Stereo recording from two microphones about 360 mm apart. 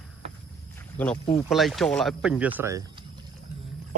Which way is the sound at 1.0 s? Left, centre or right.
Centre.